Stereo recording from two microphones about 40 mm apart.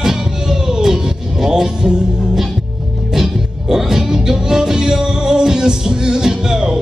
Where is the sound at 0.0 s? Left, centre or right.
Centre.